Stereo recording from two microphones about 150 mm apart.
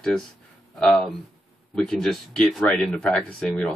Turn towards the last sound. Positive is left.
turn(degrees=5)  # may be behind; listen again after turning